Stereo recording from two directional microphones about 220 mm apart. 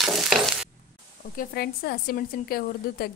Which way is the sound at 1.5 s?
45° left (ahead or behind).